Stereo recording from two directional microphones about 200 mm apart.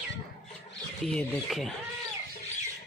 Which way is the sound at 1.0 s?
Centre (ahead or behind).